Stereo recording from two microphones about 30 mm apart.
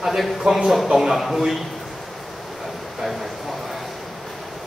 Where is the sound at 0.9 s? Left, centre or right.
Centre.